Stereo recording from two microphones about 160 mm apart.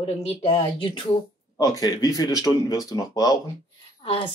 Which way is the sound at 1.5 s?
20° left (ahead or behind).